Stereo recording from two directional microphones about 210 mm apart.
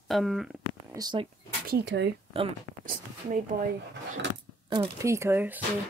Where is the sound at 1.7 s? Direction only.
55° right (ahead or behind).